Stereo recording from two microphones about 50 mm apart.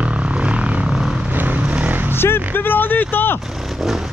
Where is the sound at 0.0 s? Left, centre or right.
Right.